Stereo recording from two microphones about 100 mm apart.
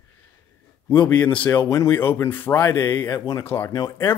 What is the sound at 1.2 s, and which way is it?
Speech, 10° left (ahead or behind).